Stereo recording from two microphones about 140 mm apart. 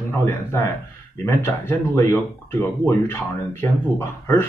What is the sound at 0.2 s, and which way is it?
Speech, 20° left (ahead or behind).